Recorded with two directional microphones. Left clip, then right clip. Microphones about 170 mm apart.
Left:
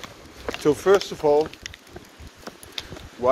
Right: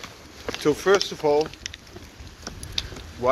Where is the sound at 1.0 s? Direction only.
35° left (ahead or behind).